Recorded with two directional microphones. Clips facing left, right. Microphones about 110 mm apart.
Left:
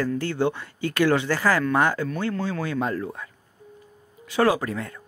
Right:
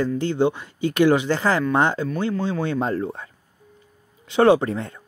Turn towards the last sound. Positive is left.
turn(degrees=-25)  # may be behind; listen again after turning